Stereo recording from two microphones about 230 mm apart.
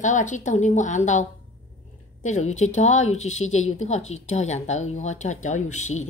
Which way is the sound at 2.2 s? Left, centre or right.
Left.